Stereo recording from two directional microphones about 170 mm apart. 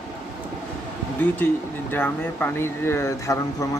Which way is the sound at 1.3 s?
10° left (ahead or behind).